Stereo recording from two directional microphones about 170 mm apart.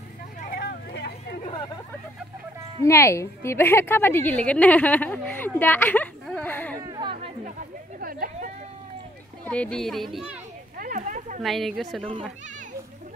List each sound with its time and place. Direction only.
0.5 s vehicle: 70° left (ahead or behind)
2.8 s a woman's voice: 15° left (ahead or behind)
6.8 s chatter: 25° right (ahead or behind)
8.0 s a sound: 55° right (ahead or behind)
9.4 s a child's voice: 5° left (ahead or behind)
10.8 s a sound: 50° right (ahead or behind)
11.4 s a child's voice: centre (ahead or behind)